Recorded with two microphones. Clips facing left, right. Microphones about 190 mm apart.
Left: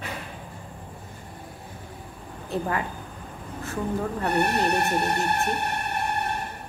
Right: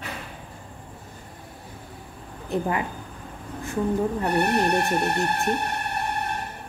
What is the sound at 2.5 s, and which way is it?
Speech, 15° right (ahead or behind).